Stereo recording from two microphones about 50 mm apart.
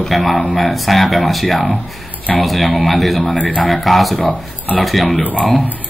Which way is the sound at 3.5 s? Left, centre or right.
Centre.